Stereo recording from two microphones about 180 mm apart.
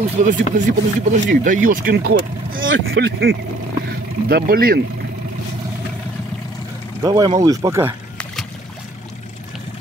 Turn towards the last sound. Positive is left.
turn(degrees=-15)  # may be behind; listen again after turning